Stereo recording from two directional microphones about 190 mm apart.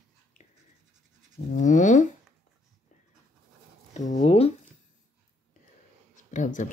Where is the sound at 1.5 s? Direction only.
40° left (ahead or behind).